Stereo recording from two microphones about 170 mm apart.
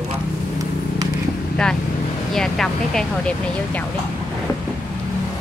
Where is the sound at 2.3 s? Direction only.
Centre (ahead or behind).